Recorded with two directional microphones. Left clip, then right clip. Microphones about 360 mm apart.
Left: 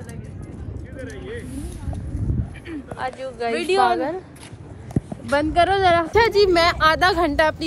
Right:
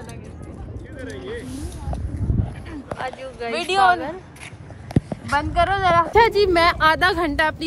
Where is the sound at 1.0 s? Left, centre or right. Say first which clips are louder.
Right 2 dB; right.